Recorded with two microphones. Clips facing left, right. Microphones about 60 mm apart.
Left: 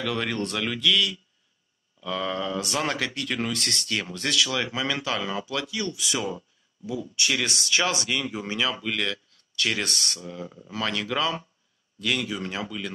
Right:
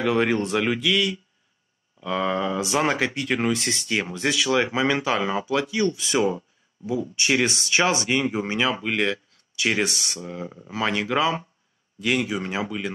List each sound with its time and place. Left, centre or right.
0.0 s speech: right